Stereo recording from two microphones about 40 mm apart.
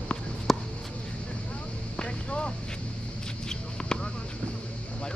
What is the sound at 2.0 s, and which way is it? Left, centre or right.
Vehicle, left.